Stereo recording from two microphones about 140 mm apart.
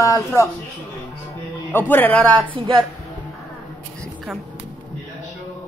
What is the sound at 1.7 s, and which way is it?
Speech, 15° left (ahead or behind).